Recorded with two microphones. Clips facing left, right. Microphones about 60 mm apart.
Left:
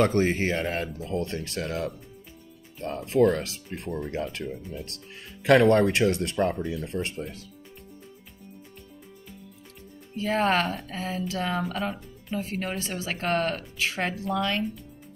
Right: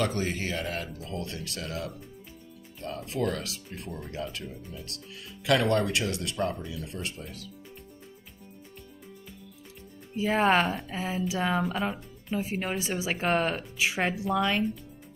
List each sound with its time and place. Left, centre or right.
0.0 s speech: left
10.1 s speech: centre